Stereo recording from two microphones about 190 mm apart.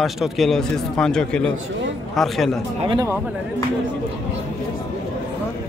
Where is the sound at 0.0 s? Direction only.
Centre (ahead or behind).